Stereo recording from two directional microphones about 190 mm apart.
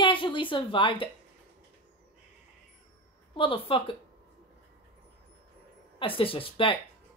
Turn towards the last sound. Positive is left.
turn(degrees=30)  # may be behind; listen again after turning